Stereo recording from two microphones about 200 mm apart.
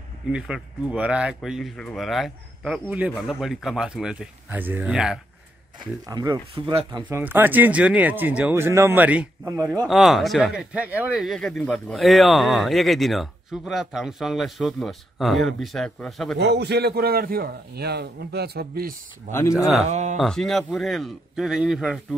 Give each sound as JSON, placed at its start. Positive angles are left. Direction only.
{"t": 0.3, "sound": "speech", "side_deg": -5}
{"t": 6.0, "sound": "speech", "side_deg": -20}
{"t": 7.1, "sound": "speech", "side_deg": -10}
{"t": 16.3, "sound": "a man's voice", "side_deg": -55}
{"t": 19.5, "sound": "speech", "side_deg": 0}
{"t": 19.9, "sound": "speech", "side_deg": -35}
{"t": 20.2, "sound": "speech", "side_deg": 0}